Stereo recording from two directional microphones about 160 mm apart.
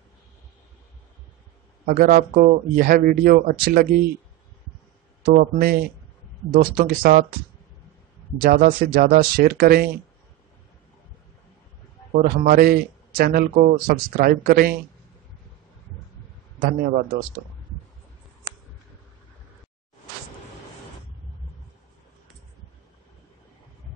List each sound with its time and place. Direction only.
1.9 s a man's voice: 65° right (ahead or behind)
5.2 s a man's voice: 65° right (ahead or behind)
8.4 s speech: 60° right (ahead or behind)
12.1 s a man's voice: 65° right (ahead or behind)